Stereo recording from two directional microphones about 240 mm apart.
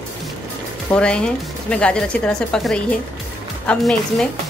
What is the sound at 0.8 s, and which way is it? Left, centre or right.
Speech, centre.